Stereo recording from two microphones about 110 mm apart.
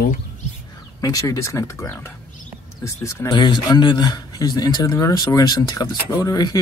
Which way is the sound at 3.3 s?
45° left (ahead or behind).